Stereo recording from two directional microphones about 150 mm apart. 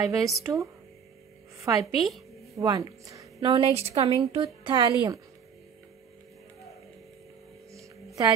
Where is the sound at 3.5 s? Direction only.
40° right (ahead or behind).